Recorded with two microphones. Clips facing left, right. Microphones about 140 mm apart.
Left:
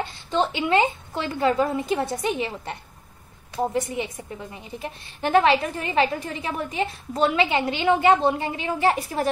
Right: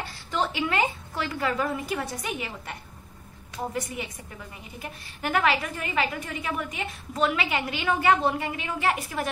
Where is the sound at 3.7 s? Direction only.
25° left (ahead or behind).